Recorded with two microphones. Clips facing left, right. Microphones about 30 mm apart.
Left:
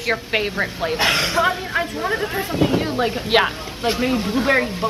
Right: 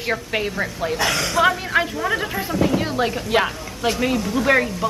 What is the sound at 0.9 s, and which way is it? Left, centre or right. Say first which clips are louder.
Speech: left 3 dB; left.